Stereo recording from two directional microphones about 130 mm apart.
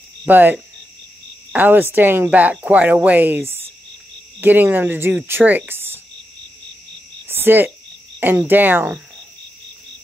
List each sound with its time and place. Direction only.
0.3 s speech: 15° right (ahead or behind)
7.2 s cricket: 15° right (ahead or behind)
8.2 s speech: 15° right (ahead or behind)